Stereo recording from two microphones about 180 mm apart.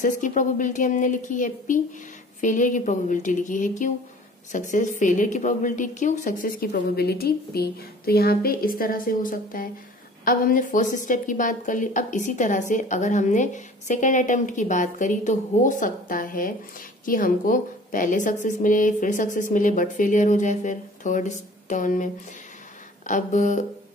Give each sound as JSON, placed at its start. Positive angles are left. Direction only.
{"t": 0.0, "sound": "a woman's voice", "side_deg": 45}